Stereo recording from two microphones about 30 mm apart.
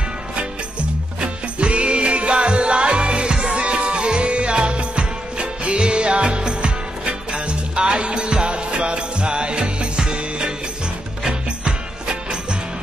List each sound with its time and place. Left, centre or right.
1.6 s music: right
11.6 s music: right